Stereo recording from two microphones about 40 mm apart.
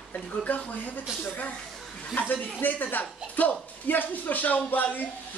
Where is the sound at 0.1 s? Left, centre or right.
Left.